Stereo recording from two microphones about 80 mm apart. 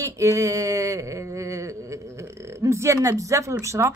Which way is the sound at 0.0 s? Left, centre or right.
Right.